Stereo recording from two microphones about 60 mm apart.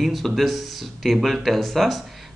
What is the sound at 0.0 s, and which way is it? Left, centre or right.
Speech, centre.